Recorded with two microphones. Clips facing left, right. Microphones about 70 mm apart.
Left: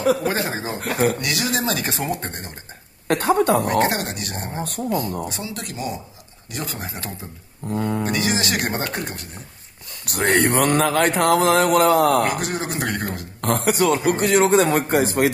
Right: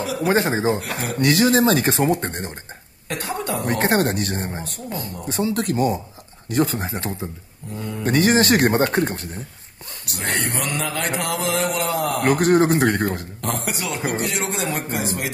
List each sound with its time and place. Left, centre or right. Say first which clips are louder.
0.0 s speech: left 5 dB; left
0.3 s speech: right 6 dB; right
0.7 s speech: left 7 dB; left
1.1 s speech: right 7 dB; right
3.1 s speech: left 9 dB; left
3.6 s speech: right 1 dB; right
4.9 s speech: left 6 dB; left
5.3 s speech: right 9 dB; right
7.7 s speech: left 7 dB; left
8.0 s speech: right 5 dB; right
10.0 s speech: left 7 dB; left
12.3 s speech: right 9 dB; right
13.4 s speech: left 11 dB; left